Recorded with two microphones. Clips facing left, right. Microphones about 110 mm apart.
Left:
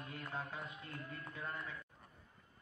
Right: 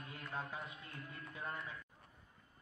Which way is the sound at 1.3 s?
25° right (ahead or behind).